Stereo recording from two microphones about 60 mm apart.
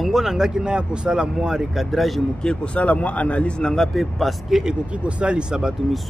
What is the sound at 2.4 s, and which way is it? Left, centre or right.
Speech, centre.